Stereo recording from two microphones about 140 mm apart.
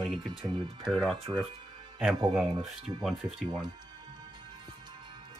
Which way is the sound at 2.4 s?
5° right (ahead or behind).